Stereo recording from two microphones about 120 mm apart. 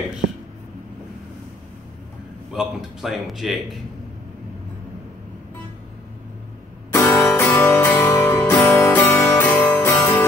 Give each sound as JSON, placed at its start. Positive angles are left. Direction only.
{"t": 2.5, "sound": "a man's voice", "side_deg": 0}
{"t": 6.9, "sound": "music", "side_deg": 20}